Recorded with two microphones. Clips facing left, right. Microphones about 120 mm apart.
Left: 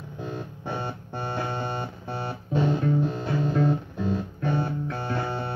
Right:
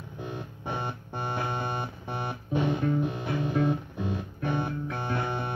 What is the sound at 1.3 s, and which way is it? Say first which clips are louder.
Music: left 2 dB; 15° right (ahead or behind).